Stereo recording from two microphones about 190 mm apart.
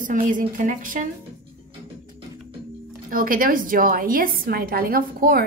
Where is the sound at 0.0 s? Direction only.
45° right (ahead or behind).